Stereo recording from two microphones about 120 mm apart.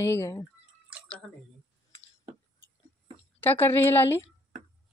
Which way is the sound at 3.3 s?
15° left (ahead or behind).